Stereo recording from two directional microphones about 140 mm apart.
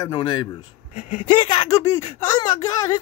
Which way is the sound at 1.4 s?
35° left (ahead or behind).